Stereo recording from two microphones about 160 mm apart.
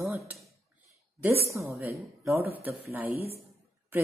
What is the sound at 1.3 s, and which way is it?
A woman's voice, 15° right (ahead or behind).